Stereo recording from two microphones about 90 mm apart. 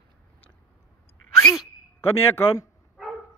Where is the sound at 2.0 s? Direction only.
25° left (ahead or behind).